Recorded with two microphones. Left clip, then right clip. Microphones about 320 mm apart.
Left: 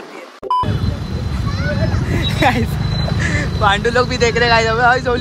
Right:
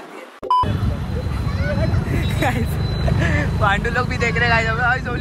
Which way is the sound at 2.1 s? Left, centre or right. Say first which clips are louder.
Left 7 dB; centre.